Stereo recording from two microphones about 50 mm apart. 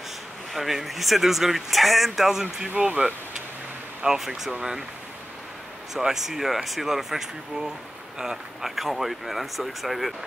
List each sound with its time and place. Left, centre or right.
0.5 s speech: centre
2.8 s speech: right
4.0 s speech: centre
5.9 s speech: centre